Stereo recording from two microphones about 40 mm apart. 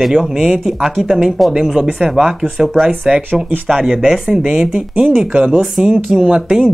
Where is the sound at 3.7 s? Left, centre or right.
Centre.